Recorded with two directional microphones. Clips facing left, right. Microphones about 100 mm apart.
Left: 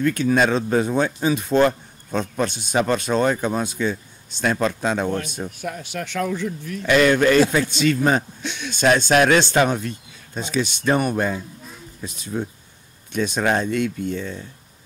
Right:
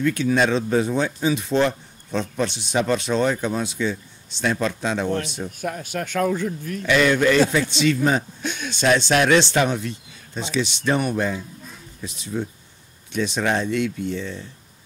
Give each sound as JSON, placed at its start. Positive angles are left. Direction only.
{"t": 0.0, "sound": "speech", "side_deg": 50}
{"t": 5.6, "sound": "speech", "side_deg": -45}
{"t": 6.9, "sound": "speech", "side_deg": 50}
{"t": 8.4, "sound": "speech", "side_deg": -45}
{"t": 8.6, "sound": "speech", "side_deg": 50}